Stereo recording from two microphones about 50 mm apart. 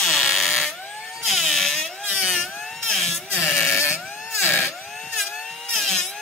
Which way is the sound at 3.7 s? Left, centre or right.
Left.